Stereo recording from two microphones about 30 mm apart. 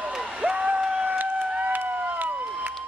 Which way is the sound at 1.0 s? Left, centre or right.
Right.